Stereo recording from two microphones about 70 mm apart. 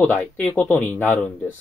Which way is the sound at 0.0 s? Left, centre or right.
Left.